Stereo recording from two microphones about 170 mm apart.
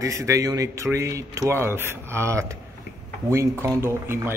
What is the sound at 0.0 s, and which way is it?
Speech, 20° right (ahead or behind).